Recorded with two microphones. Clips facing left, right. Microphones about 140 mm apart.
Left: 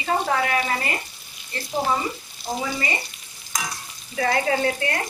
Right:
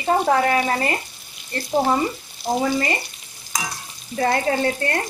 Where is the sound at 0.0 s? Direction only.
40° right (ahead or behind).